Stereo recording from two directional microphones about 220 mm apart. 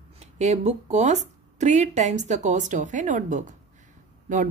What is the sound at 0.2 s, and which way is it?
Speech, 30° right (ahead or behind).